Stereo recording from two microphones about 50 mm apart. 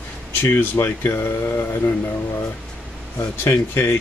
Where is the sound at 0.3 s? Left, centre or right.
Left.